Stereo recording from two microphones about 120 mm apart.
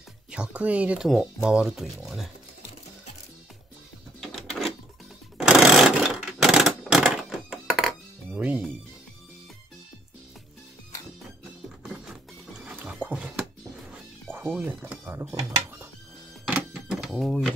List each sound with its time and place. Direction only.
0.3 s speech: 10° right (ahead or behind)
4.2 s a sound: 5° left (ahead or behind)
5.4 s sewing machine: 5° right (ahead or behind)
8.4 s music: 15° right (ahead or behind)
11.9 s music: 5° right (ahead or behind)
12.7 s dog: 10° right (ahead or behind)
14.3 s speech: 15° right (ahead or behind)
16.4 s a sound: 5° right (ahead or behind)